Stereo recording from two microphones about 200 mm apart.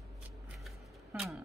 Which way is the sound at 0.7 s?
Centre (ahead or behind).